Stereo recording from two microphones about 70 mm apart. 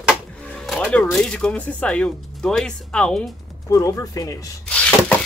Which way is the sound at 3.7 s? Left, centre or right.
Left.